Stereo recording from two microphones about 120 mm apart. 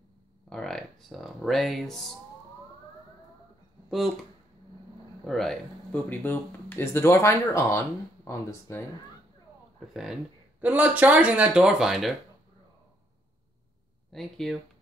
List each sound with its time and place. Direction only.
0.5 s speech: 5° left (ahead or behind)
3.9 s speech: centre (ahead or behind)
6.0 s speech: 15° left (ahead or behind)
10.6 s speech: 15° right (ahead or behind)
14.1 s speech: 5° left (ahead or behind)